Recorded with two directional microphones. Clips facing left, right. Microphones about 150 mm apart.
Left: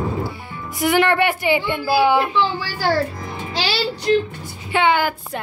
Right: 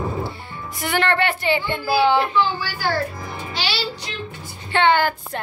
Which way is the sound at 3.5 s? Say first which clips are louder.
Left 5 dB; 45° left (ahead or behind).